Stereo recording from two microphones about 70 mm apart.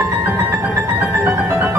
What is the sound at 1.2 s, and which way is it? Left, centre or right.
Music, right.